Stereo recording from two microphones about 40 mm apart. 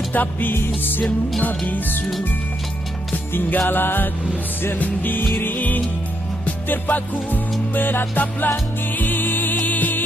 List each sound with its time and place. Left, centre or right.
0.1 s music: left
3.3 s music: left
9.6 s music: left